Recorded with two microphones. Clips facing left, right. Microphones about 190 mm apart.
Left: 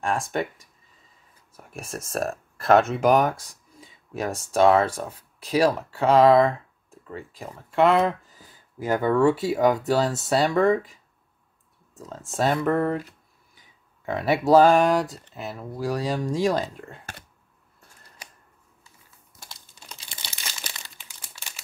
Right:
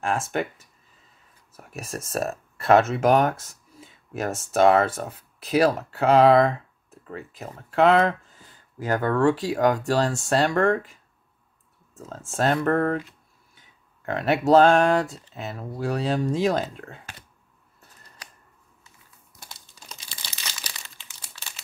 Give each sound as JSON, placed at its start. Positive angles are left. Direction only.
{"t": 0.0, "sound": "speech", "side_deg": 0}
{"t": 1.7, "sound": "speech", "side_deg": -5}
{"t": 14.0, "sound": "speech", "side_deg": 0}